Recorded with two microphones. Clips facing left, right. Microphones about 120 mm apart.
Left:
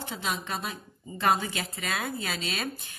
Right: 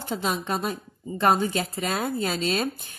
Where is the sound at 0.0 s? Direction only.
45° right (ahead or behind).